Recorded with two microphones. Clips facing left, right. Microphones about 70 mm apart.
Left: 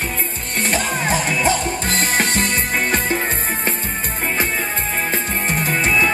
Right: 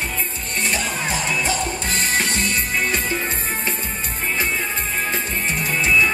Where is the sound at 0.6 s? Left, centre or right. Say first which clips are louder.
Left 3 dB; left.